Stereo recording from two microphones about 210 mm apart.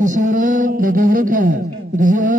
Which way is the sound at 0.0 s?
40° right (ahead or behind).